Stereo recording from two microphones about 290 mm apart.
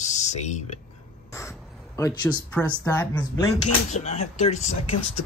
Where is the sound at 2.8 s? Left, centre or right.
Centre.